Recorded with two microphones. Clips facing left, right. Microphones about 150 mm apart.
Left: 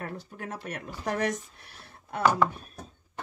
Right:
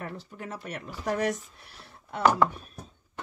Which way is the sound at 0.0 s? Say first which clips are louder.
Left 1 dB; 50° left (ahead or behind).